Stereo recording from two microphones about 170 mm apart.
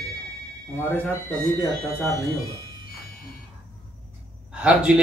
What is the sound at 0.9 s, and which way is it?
Speech, 15° right (ahead or behind).